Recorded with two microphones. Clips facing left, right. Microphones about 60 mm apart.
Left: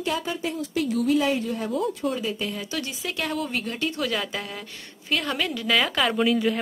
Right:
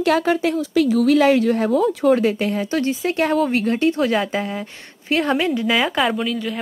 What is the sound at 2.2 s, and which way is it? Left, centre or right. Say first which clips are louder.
Speech: right 9 dB; right.